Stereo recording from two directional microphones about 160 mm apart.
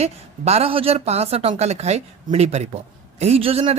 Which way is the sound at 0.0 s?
40° right (ahead or behind).